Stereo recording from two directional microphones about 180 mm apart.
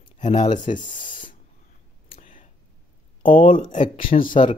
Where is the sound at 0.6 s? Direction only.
45° left (ahead or behind).